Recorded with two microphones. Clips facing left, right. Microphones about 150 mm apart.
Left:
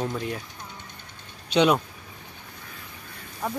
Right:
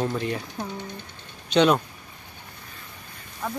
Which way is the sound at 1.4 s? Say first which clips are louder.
Right 1 dB; 5° left (ahead or behind).